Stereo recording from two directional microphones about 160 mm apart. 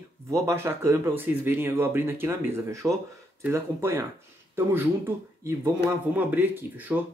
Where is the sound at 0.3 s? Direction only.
15° right (ahead or behind).